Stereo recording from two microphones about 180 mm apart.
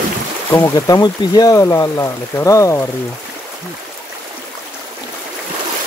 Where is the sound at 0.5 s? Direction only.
20° left (ahead or behind).